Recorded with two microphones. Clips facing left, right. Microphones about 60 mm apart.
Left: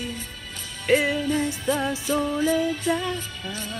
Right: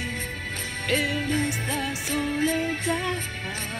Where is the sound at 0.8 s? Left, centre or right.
Left.